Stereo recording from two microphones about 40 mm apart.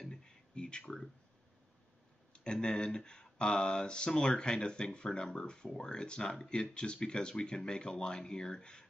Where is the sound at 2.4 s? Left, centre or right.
Left.